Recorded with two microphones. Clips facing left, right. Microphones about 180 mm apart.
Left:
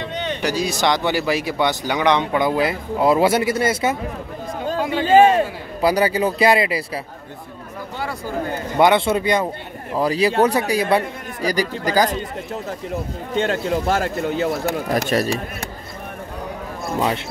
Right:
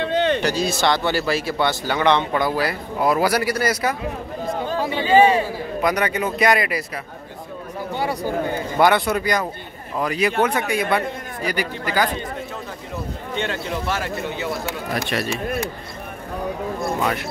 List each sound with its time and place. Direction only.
0.0 s a sound: 65° right (ahead or behind)
0.4 s speech: 10° left (ahead or behind)
4.6 s a man's voice: 45° left (ahead or behind)
5.8 s a man's voice: 30° left (ahead or behind)
8.7 s a man's voice: 25° left (ahead or behind); by 12.2 s 40° left (ahead or behind)
13.3 s a man's voice: 45° left (ahead or behind)